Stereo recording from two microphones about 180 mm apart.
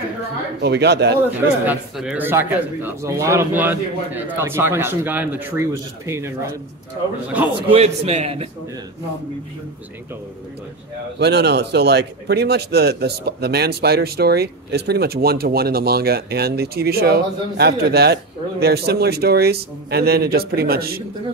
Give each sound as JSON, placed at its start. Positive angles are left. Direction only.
{"t": 0.6, "sound": "speech", "side_deg": -65}
{"t": 1.7, "sound": "speech", "side_deg": -5}
{"t": 7.7, "sound": "a man's voice", "side_deg": -35}
{"t": 11.1, "sound": "a man's voice", "side_deg": -70}